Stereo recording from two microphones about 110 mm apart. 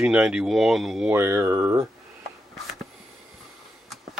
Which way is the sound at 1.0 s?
20° right (ahead or behind).